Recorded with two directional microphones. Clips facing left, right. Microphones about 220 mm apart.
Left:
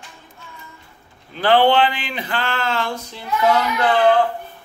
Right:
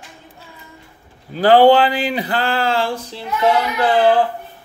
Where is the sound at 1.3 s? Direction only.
40° right (ahead or behind).